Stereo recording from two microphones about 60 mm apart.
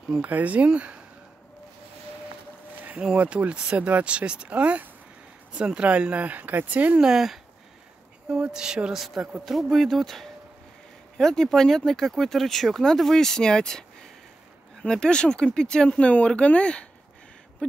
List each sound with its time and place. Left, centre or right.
0.2 s speech: right
3.2 s speech: right
7.0 s speech: centre
9.0 s speech: centre